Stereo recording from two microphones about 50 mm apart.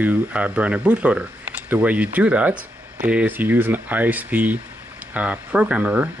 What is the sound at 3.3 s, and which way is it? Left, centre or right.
Speech, right.